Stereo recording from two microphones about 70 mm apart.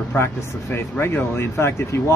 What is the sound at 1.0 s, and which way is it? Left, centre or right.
Speech, left.